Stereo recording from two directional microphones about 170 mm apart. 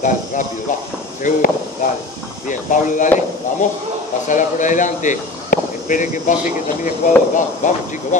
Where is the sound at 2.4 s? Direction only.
50° left (ahead or behind).